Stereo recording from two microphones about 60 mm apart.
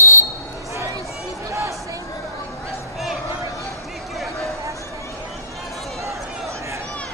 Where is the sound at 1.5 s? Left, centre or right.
Right.